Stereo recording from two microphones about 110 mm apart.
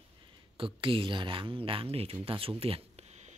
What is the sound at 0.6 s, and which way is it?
Speech, 50° right (ahead or behind).